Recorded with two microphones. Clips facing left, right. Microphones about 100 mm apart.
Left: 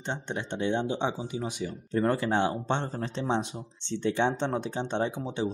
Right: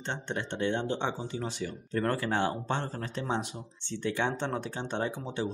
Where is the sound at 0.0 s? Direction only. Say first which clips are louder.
Left 1 dB; 15° left (ahead or behind).